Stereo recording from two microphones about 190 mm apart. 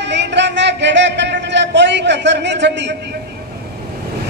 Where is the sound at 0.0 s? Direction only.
65° right (ahead or behind).